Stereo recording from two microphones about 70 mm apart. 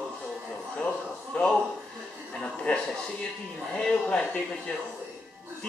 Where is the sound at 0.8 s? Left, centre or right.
Centre.